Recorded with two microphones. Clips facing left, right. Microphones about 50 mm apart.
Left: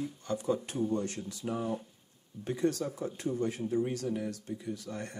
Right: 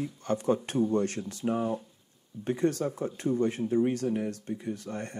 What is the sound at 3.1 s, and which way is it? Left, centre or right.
Speech, right.